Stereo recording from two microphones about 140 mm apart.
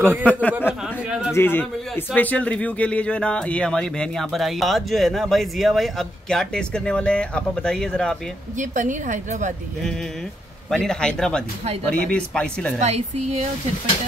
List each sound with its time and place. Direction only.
0.2 s a man's voice: 10° left (ahead or behind)
8.5 s a woman's voice: 65° right (ahead or behind)
10.7 s a man's voice: 5° left (ahead or behind)
12.8 s speech: 50° right (ahead or behind)